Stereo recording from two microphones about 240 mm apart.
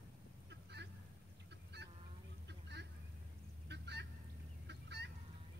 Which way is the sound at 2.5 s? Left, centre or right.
Right.